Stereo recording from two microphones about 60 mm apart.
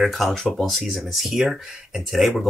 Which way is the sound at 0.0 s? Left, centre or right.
Centre.